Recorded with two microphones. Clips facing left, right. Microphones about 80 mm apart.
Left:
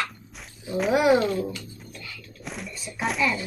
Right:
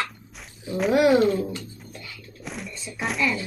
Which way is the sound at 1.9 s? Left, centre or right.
Right.